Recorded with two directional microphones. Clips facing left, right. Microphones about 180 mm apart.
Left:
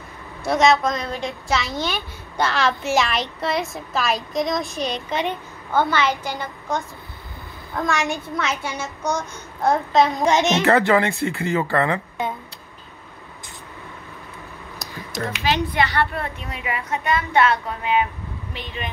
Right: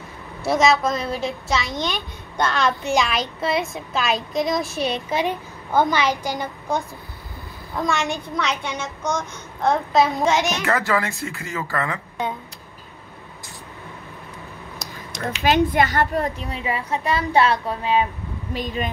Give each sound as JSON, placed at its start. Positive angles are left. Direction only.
{"t": 0.5, "sound": "a child's voice", "side_deg": 0}
{"t": 7.7, "sound": "a child's voice", "side_deg": 0}
{"t": 10.1, "sound": "a child's voice", "side_deg": 15}
{"t": 10.6, "sound": "speech", "side_deg": 30}
{"t": 15.4, "sound": "a woman's voice", "side_deg": -50}